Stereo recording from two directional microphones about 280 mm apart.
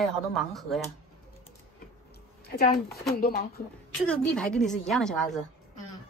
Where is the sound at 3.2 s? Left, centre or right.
Left.